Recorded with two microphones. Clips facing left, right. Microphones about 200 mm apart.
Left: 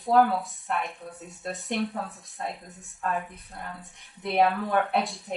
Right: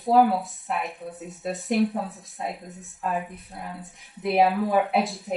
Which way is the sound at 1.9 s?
15° right (ahead or behind).